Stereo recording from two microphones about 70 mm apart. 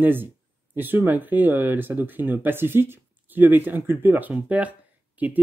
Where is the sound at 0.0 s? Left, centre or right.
Right.